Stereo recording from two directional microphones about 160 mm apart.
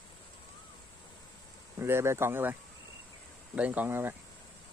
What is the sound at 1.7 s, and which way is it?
Speech, 15° right (ahead or behind).